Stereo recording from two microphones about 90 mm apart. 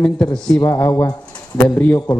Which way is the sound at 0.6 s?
35° left (ahead or behind).